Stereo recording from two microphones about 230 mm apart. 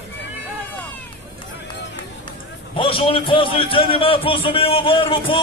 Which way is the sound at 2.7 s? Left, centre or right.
Left.